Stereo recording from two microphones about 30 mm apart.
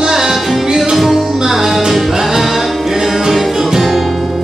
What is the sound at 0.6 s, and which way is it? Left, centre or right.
Music, centre.